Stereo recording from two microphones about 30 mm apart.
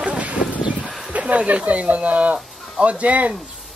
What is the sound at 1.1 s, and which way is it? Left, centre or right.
Speech, right.